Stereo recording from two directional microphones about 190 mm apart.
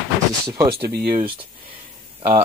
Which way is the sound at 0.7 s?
55° right (ahead or behind).